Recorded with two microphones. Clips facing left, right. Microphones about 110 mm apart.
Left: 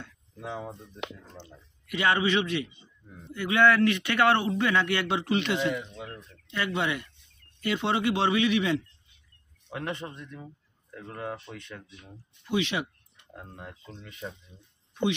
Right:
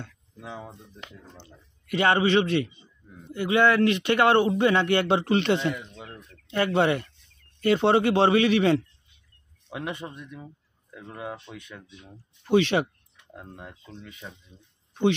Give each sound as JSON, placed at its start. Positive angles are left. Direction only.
{"t": 0.4, "sound": "speech", "side_deg": 0}
{"t": 1.9, "sound": "speech", "side_deg": -35}
{"t": 3.3, "sound": "a man's voice", "side_deg": -20}
{"t": 5.8, "sound": "bird", "side_deg": 0}
{"t": 6.5, "sound": "speech", "side_deg": -40}
{"t": 9.7, "sound": "speech", "side_deg": -10}
{"t": 12.4, "sound": "speech", "side_deg": -40}
{"t": 13.3, "sound": "speech", "side_deg": 0}